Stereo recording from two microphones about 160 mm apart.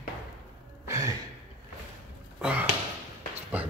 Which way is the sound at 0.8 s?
20° right (ahead or behind).